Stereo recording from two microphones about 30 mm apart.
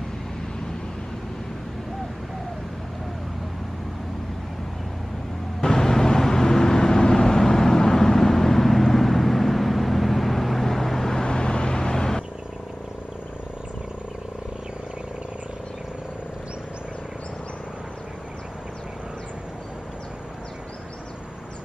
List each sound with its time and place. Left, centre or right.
5.6 s vehicle: centre
11.1 s vehicle: left